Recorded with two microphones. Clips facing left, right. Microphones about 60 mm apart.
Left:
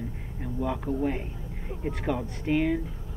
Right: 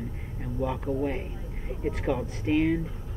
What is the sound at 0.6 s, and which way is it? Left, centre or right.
Speech, centre.